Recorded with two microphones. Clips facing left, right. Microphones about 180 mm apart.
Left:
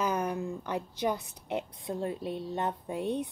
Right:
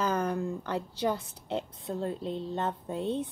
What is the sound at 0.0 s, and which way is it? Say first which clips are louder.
A woman's voice: right 1 dB; 10° left (ahead or behind).